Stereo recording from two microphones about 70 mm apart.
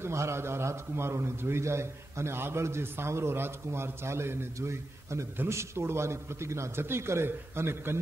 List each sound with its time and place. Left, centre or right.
0.0 s a man's voice: right